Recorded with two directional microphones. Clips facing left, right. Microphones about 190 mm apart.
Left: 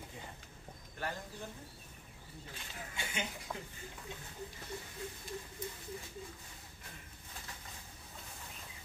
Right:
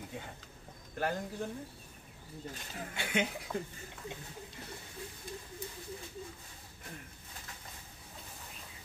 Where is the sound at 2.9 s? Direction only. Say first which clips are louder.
Right 8 dB; 65° right (ahead or behind).